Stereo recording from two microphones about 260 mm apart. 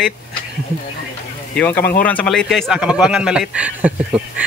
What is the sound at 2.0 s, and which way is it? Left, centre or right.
Speech, centre.